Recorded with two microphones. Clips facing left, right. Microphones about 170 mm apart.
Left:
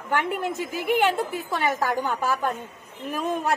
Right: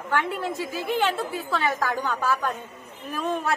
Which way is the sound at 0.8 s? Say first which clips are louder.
Left 3 dB; 15° left (ahead or behind).